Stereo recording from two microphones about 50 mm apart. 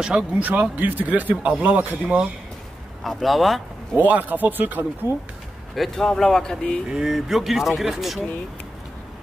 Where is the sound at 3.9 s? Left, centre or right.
Right.